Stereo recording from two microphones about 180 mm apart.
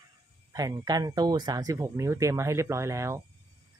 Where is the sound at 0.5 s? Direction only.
20° right (ahead or behind).